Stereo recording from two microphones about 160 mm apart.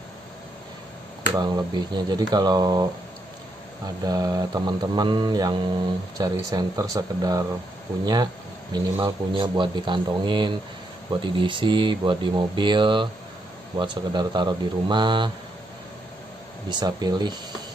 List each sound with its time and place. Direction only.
1.3 s speech: 25° right (ahead or behind)
16.6 s speech: 25° right (ahead or behind)